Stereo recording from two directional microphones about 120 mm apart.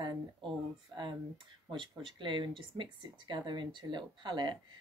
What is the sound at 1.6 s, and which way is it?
Speech, 40° right (ahead or behind).